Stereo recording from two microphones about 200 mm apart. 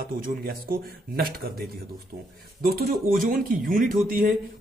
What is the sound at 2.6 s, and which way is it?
Speech, 50° right (ahead or behind).